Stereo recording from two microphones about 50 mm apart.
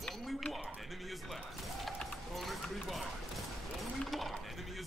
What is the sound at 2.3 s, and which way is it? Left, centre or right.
Clip-clop, centre.